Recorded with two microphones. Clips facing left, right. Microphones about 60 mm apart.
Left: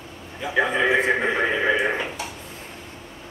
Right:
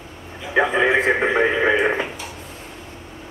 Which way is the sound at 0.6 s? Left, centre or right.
Right.